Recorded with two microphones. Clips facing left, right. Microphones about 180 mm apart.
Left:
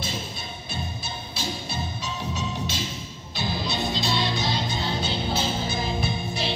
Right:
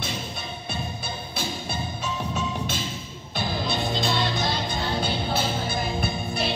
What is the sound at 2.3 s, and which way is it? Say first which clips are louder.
Music: right 1 dB; 55° right (ahead or behind).